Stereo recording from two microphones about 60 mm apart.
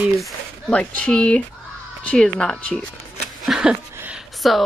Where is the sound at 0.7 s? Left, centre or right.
Centre.